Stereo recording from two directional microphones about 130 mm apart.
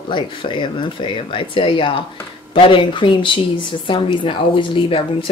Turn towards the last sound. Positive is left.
turn(degrees=45)  # may be behind; listen again after turning